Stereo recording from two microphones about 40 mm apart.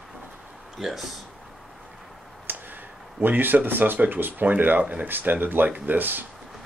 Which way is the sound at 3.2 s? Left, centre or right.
Right.